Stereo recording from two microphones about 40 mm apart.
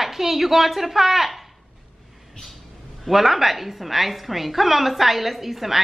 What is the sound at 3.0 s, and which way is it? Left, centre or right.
A woman's voice, centre.